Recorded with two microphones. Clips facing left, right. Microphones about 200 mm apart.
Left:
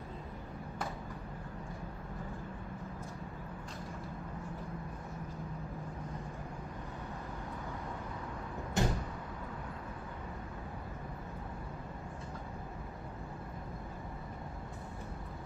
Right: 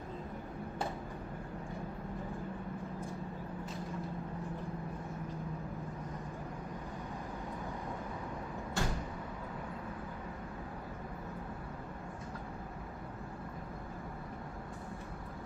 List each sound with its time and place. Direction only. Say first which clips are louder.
8.8 s door: left 4 dB; 20° left (ahead or behind)